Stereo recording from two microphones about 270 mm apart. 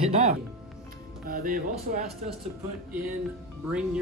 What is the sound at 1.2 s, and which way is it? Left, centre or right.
Speech, right.